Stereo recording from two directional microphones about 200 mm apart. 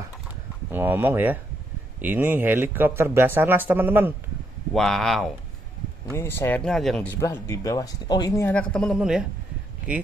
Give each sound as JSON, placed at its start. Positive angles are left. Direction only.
{"t": 0.7, "sound": "a man's voice", "side_deg": -10}
{"t": 4.7, "sound": "speech", "side_deg": 0}
{"t": 6.1, "sound": "speech", "side_deg": 10}